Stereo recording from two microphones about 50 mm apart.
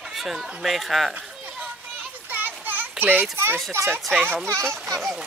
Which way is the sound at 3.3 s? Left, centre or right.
Right.